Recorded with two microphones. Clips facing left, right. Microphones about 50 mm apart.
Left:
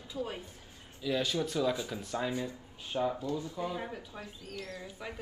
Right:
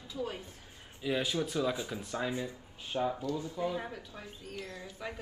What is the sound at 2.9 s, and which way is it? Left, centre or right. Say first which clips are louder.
Speech: left 1 dB; centre.